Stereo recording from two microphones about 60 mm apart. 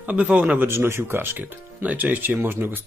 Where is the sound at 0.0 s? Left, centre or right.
Right.